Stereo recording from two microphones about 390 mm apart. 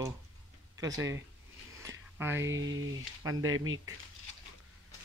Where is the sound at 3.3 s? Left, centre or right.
Right.